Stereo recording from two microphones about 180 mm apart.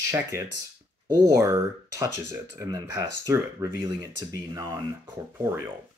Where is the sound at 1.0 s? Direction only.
15° right (ahead or behind).